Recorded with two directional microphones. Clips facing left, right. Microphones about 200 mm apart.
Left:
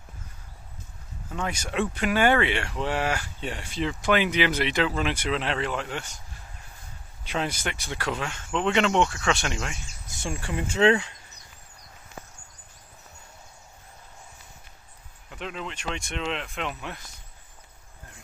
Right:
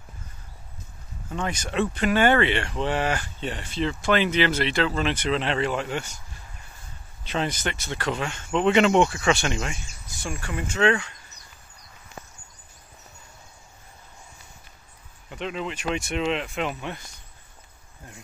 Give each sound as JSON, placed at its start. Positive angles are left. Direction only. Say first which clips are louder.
{"t": 1.3, "sound": "speech", "louder": "right 2 dB", "side_deg": 5}
{"t": 7.2, "sound": "speech", "louder": "right 2 dB", "side_deg": 10}
{"t": 10.2, "sound": "speech", "louder": "left 1 dB", "side_deg": 25}
{"t": 15.2, "sound": "speech", "louder": "right 5 dB", "side_deg": 0}